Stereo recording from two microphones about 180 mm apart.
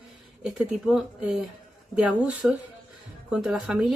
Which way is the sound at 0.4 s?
5° right (ahead or behind).